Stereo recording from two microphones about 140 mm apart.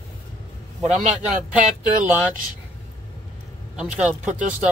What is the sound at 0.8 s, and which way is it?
Speech, 55° right (ahead or behind).